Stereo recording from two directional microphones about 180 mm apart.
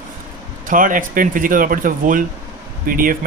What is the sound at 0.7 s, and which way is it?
Speech, 50° right (ahead or behind).